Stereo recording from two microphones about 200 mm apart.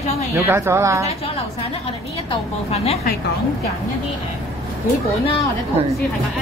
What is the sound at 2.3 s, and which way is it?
Speech, 30° left (ahead or behind).